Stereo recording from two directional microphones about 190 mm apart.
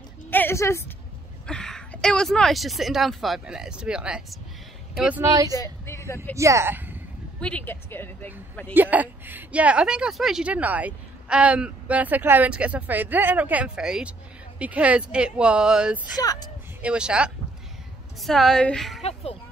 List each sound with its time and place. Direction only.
0.3 s speech: 10° left (ahead or behind)
1.4 s speech: 5° left (ahead or behind)
5.2 s a woman's voice: 20° right (ahead or behind)
5.5 s a woman's voice: 15° left (ahead or behind)
6.3 s a woman's voice: 15° right (ahead or behind)
7.3 s a woman's voice: 5° left (ahead or behind)
8.7 s a woman's voice: 10° right (ahead or behind)
16.2 s speech: 20° left (ahead or behind)
16.8 s speech: 5° right (ahead or behind)